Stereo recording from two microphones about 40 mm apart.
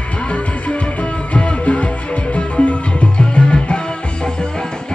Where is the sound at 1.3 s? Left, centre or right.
Left.